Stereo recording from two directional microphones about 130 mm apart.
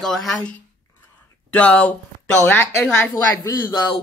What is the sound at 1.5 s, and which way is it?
Speech, 10° left (ahead or behind).